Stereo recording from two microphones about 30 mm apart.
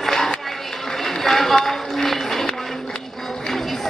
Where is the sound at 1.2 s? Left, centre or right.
Centre.